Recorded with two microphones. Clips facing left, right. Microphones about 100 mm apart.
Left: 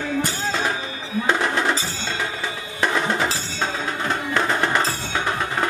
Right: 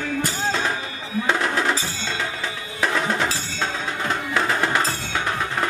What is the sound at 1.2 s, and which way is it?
Music, centre (ahead or behind).